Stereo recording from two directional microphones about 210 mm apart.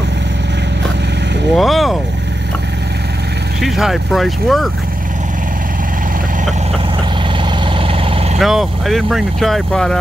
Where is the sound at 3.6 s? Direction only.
Centre (ahead or behind).